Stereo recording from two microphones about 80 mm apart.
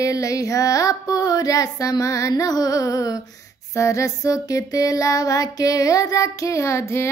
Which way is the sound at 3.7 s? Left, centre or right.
Left.